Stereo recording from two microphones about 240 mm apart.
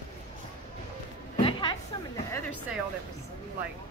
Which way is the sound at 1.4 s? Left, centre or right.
Centre.